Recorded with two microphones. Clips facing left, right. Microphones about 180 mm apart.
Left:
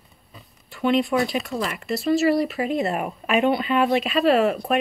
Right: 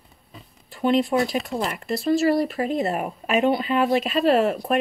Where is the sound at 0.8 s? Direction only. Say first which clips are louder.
Even; 40° right (ahead or behind).